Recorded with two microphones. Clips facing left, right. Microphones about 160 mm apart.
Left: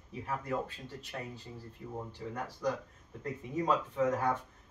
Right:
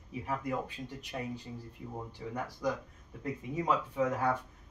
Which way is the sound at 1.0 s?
15° right (ahead or behind).